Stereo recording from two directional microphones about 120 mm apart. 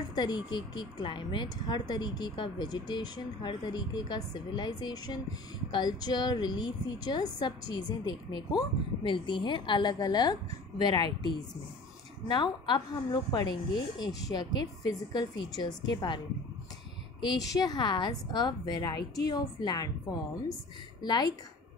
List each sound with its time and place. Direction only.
0.1 s a woman's voice: 40° left (ahead or behind)
17.2 s a woman's voice: 35° left (ahead or behind)